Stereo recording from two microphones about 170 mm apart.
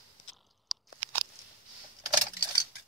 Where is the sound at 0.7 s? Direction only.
Centre (ahead or behind).